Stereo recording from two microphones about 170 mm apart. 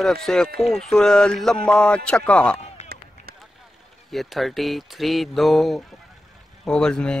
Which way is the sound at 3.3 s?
65° right (ahead or behind).